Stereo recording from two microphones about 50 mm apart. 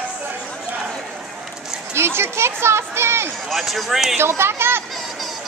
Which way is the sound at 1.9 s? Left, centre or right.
Right.